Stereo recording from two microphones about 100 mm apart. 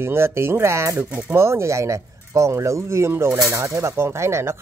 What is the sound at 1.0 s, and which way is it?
Speech, 15° right (ahead or behind).